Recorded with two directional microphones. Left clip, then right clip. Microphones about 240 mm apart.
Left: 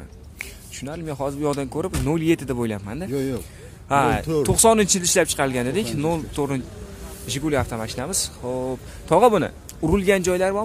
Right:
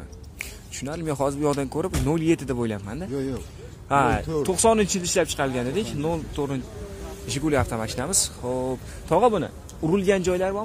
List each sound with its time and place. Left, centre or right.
0.7 s speech: centre
3.1 s speech: left
3.9 s speech: centre
7.2 s speech: centre
9.1 s a man's voice: left
9.9 s speech: centre